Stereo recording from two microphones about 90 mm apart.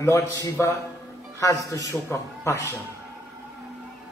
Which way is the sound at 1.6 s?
35° left (ahead or behind).